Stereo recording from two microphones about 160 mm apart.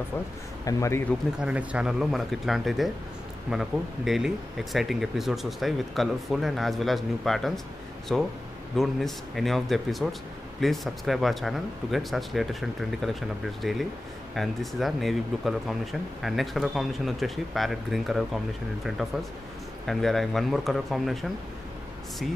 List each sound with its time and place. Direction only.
0.7 s speech: 20° left (ahead or behind)
1.4 s speech: 10° right (ahead or behind)
19.9 s speech: centre (ahead or behind)